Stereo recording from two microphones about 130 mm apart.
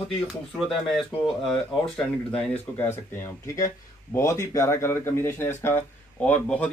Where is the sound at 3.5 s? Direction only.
25° left (ahead or behind).